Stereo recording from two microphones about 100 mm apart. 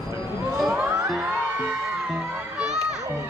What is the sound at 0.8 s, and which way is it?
Music, 5° right (ahead or behind).